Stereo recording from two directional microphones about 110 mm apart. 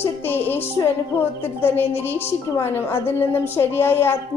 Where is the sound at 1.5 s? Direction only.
20° left (ahead or behind).